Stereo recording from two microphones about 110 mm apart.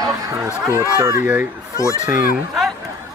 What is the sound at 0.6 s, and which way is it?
Speech, 30° right (ahead or behind).